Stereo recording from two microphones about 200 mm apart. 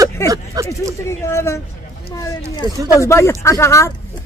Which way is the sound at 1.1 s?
15° left (ahead or behind).